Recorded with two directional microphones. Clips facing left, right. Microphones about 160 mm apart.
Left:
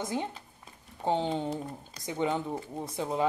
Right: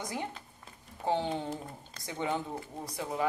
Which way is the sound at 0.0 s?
25° left (ahead or behind).